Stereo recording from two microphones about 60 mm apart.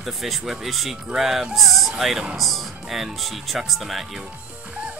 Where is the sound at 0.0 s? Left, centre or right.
Centre.